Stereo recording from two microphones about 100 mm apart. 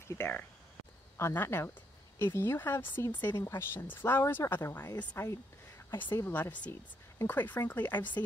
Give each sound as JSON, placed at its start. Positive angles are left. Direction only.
{"t": 0.1, "sound": "speech", "side_deg": 20}